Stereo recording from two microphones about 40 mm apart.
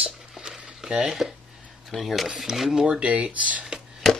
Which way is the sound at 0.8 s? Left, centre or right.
Centre.